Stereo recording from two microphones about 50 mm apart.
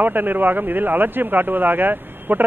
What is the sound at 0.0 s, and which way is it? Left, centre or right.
A man's voice, right.